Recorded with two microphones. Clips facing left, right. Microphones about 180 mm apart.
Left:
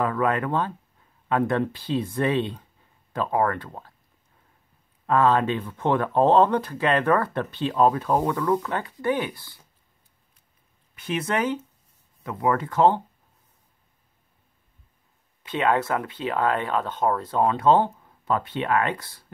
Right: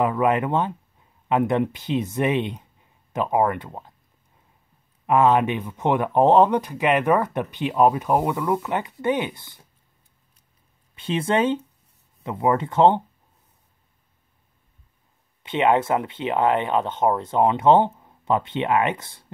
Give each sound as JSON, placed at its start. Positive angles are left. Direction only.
{"t": 0.0, "sound": "speech", "side_deg": -20}
{"t": 5.0, "sound": "speech", "side_deg": -15}
{"t": 11.0, "sound": "speech", "side_deg": -25}
{"t": 15.4, "sound": "speech", "side_deg": -25}